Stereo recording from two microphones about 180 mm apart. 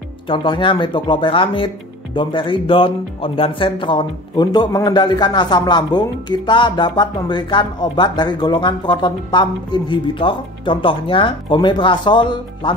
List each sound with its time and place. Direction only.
0.3 s speech: 25° left (ahead or behind)